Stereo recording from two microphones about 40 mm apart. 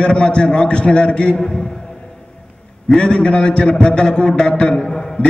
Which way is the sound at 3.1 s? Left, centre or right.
Left.